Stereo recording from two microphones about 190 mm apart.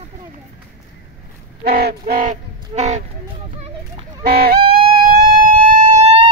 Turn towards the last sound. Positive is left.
turn(degrees=-35)  # may be behind; listen again after turning